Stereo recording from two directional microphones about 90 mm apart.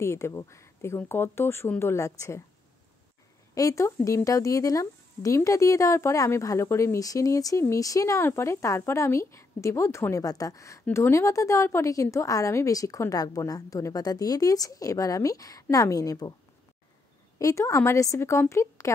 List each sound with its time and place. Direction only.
0.0 s speech: 30° left (ahead or behind)
3.5 s speech: 35° left (ahead or behind)
17.4 s speech: 35° left (ahead or behind)